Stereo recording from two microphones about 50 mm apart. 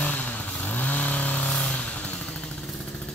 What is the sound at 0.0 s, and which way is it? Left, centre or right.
Vehicle, left.